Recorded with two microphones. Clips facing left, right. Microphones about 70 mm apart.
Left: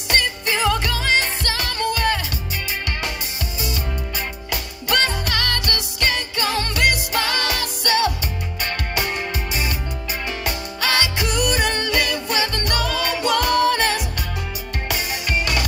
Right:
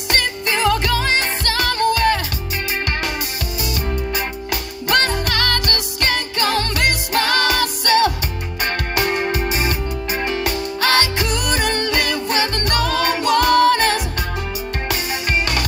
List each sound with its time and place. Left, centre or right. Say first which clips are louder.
0.1 s music: right 1 dB; right
4.5 s music: right 3 dB; right